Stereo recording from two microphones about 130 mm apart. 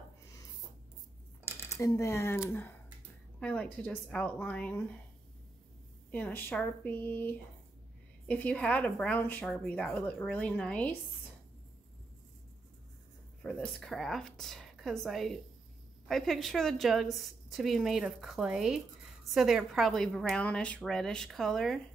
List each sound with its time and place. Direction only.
1.4 s a woman's voice: 25° left (ahead or behind)
6.1 s a woman's voice: 10° left (ahead or behind)
13.4 s a woman's voice: 5° left (ahead or behind)